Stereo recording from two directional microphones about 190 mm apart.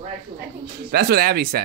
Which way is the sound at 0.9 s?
55° right (ahead or behind).